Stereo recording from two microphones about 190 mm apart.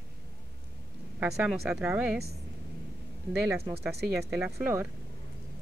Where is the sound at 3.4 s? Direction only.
15° right (ahead or behind).